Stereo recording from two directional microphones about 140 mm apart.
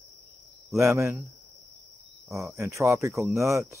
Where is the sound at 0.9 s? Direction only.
20° right (ahead or behind).